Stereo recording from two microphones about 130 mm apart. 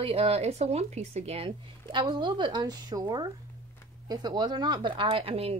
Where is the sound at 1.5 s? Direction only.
35° right (ahead or behind).